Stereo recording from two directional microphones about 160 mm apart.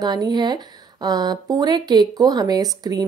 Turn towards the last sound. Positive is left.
turn(degrees=-25)  # may be behind; listen again after turning